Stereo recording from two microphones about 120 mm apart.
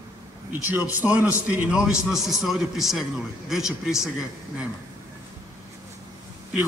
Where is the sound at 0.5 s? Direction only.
15° right (ahead or behind).